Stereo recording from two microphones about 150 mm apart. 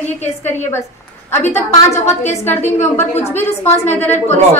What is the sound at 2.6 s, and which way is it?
Speech, 45° left (ahead or behind).